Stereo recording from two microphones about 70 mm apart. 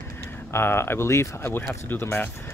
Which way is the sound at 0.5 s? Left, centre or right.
Left.